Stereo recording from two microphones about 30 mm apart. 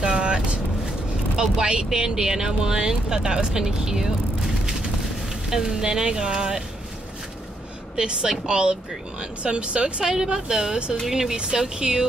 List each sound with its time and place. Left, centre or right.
0.0 s vehicle: right
1.3 s speech: right
5.5 s speech: centre
7.9 s speech: right
9.4 s speech: right
10.0 s speech: centre
11.8 s speech: right